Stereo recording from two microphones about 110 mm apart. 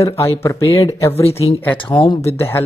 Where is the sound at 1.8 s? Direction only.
50° left (ahead or behind).